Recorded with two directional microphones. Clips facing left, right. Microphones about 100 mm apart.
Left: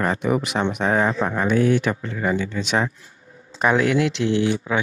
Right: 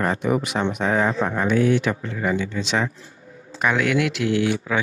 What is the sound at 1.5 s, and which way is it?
Speech, 40° left (ahead or behind).